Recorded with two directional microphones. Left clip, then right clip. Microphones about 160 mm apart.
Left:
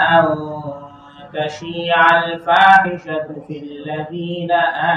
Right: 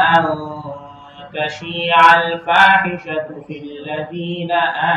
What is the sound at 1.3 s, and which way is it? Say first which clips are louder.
A man's voice: even; 30° left (ahead or behind).